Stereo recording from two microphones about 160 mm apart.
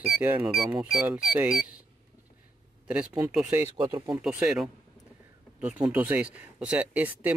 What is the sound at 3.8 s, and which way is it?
Speech, 25° right (ahead or behind).